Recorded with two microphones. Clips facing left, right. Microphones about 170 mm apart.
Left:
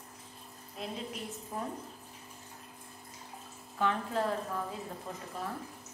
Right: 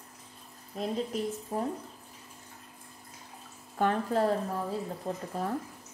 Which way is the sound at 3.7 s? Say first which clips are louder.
Right 4 dB; 45° right (ahead or behind).